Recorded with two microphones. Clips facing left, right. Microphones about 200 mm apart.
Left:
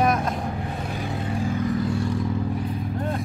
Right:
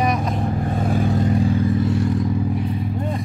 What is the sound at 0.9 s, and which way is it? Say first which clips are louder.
Vehicle: right 11 dB; 40° right (ahead or behind).